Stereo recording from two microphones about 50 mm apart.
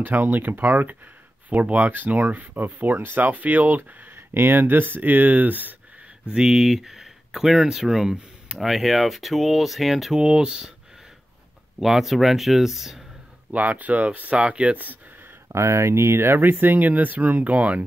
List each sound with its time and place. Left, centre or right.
0.0 s speech: right
4.3 s speech: right
6.2 s speech: centre
10.1 s speech: centre
11.8 s speech: centre
13.5 s speech: right
15.4 s speech: right